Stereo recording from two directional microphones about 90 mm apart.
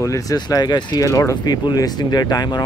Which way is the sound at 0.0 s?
35° left (ahead or behind).